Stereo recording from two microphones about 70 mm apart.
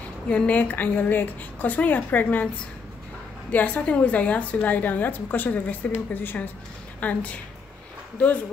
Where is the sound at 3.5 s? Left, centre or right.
Left.